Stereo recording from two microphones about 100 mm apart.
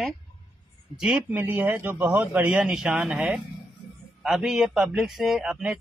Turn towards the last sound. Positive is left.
turn(degrees=-5)  # may be behind; listen again after turning